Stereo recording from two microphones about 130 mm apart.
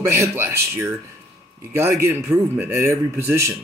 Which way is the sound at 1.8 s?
20° right (ahead or behind).